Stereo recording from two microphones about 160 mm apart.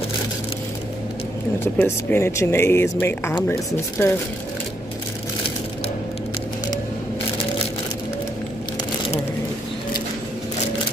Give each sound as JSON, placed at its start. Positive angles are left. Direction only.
{"t": 1.6, "sound": "speech", "side_deg": 15}